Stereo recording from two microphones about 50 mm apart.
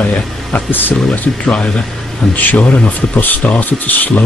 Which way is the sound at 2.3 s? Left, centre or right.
Left.